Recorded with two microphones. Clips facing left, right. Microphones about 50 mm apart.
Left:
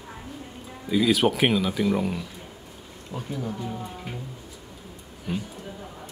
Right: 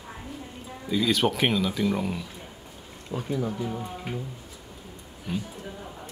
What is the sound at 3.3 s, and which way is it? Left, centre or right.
Speech, centre.